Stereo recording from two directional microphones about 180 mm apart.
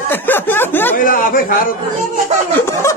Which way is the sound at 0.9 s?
50° left (ahead or behind).